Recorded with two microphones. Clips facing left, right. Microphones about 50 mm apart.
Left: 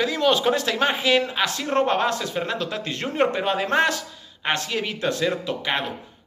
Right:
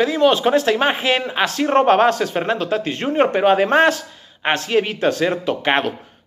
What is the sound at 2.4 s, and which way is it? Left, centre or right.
A man's voice, right.